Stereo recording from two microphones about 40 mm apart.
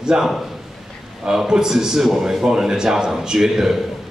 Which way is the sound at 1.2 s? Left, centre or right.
Centre.